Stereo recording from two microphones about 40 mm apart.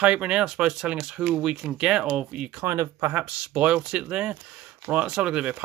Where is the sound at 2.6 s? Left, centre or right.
Right.